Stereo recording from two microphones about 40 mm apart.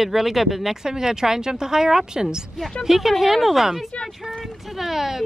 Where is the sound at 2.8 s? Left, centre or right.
Centre.